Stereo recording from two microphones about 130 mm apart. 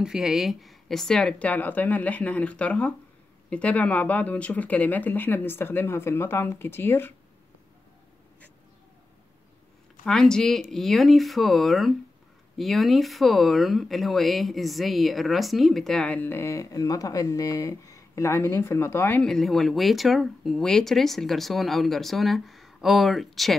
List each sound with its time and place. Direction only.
0.0 s speech: 5° right (ahead or behind); by 7.2 s 15° left (ahead or behind)
10.0 s speech: 5° left (ahead or behind)
19.2 s speech: 5° left (ahead or behind)